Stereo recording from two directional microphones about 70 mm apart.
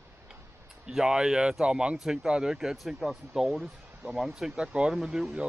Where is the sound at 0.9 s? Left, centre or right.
Centre.